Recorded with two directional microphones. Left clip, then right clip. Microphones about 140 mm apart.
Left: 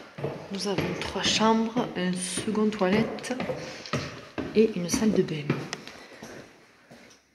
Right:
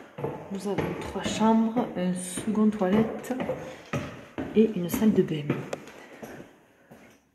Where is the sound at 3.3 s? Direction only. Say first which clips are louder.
Even; 20° right (ahead or behind).